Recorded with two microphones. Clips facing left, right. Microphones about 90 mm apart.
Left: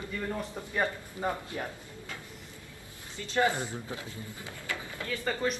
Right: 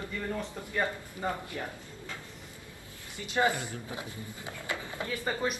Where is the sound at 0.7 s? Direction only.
20° left (ahead or behind).